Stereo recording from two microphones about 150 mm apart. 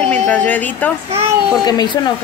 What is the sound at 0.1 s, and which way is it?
Speech, 10° left (ahead or behind).